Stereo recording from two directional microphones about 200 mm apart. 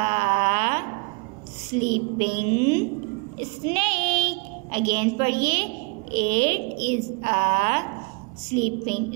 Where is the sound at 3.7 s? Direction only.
25° right (ahead or behind).